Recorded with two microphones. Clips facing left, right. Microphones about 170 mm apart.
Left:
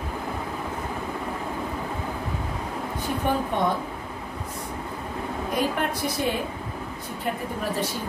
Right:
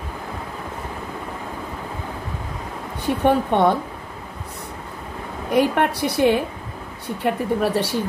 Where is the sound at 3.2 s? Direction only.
70° right (ahead or behind).